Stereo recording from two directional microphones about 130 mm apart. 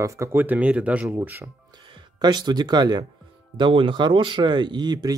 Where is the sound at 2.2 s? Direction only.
35° right (ahead or behind).